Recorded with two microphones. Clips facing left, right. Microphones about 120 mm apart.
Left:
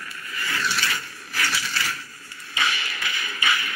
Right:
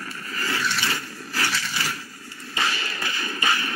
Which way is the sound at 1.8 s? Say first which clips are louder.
Right 1 dB; 15° right (ahead or behind).